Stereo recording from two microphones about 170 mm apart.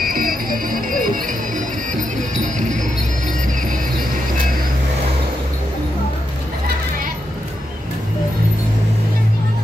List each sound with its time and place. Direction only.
0.0 s music: 55° right (ahead or behind)
2.3 s music: 45° right (ahead or behind)